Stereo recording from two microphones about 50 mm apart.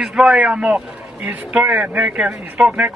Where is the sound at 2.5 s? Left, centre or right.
Right.